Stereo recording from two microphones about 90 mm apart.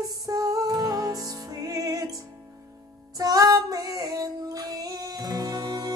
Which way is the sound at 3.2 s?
40° right (ahead or behind).